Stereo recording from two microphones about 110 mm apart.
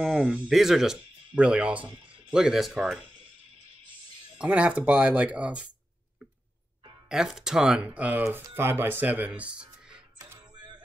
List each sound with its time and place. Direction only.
0.0 s speech: 10° right (ahead or behind)
4.4 s speech: 10° right (ahead or behind)
7.1 s speech: 5° right (ahead or behind)
8.2 s speech: 25° right (ahead or behind)